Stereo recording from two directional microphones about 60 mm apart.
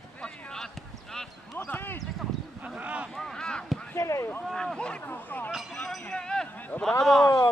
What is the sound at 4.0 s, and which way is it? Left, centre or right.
Speech, left.